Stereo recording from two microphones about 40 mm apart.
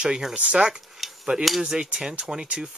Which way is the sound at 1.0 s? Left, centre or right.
Centre.